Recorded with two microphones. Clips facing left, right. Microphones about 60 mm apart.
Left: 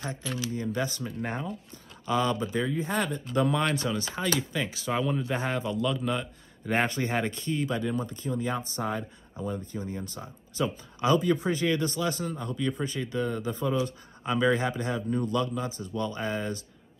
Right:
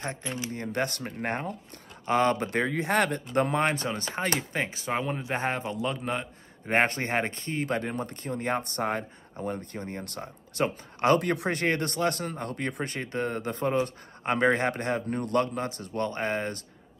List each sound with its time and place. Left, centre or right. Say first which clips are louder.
0.0 s speech: even; right
0.6 s a man's voice: right 2 dB; right
3.3 s a man's voice: right 1 dB; right